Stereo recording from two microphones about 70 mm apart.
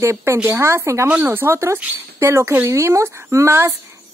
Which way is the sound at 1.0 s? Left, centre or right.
Right.